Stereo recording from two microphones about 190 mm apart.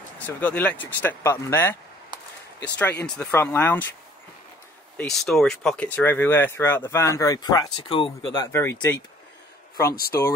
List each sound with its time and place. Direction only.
0.3 s speech: 10° left (ahead or behind)
3.0 s speech: 10° left (ahead or behind)
4.9 s speech: centre (ahead or behind); by 8.5 s 25° left (ahead or behind)
8.5 s speech: 15° left (ahead or behind)
9.8 s speech: 55° left (ahead or behind)